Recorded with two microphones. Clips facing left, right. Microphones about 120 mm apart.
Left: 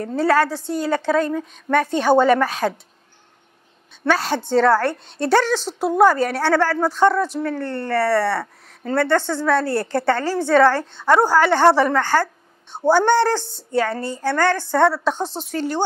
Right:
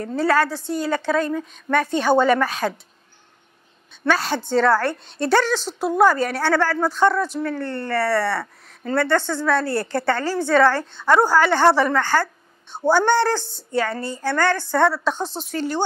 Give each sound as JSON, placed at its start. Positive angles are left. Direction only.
{"t": 0.0, "sound": "a woman's voice", "side_deg": 45}
{"t": 0.7, "sound": "a woman's voice", "side_deg": 55}
{"t": 2.0, "sound": "a woman's voice", "side_deg": 40}
{"t": 4.4, "sound": "a woman's voice", "side_deg": 30}
{"t": 4.6, "sound": "a woman's voice", "side_deg": 40}
{"t": 5.0, "sound": "a woman's voice", "side_deg": 55}
{"t": 7.3, "sound": "a woman's voice", "side_deg": 40}
{"t": 13.7, "sound": "a woman's voice", "side_deg": 45}
{"t": 14.2, "sound": "a woman's voice", "side_deg": 35}
{"t": 15.5, "sound": "a woman's voice", "side_deg": 50}